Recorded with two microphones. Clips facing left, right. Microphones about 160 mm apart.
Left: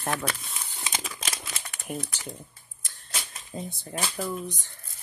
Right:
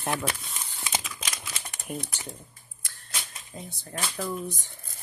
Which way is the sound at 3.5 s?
15° left (ahead or behind).